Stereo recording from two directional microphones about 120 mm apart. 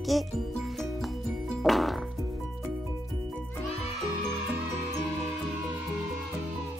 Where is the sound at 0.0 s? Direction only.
Centre (ahead or behind).